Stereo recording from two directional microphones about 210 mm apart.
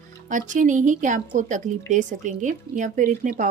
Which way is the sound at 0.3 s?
35° right (ahead or behind).